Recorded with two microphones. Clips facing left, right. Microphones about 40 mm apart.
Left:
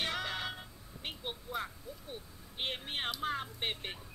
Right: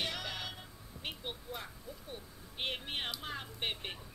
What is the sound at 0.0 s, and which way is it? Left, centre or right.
Music, left.